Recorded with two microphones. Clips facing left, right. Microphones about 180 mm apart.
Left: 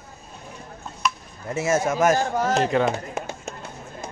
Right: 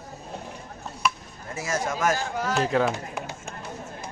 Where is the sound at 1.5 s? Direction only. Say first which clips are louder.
Left 7 dB; 25° left (ahead or behind).